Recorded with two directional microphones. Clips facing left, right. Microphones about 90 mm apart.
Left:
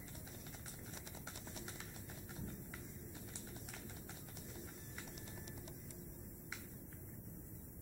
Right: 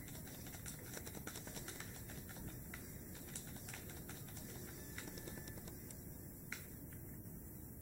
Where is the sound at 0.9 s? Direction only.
5° left (ahead or behind).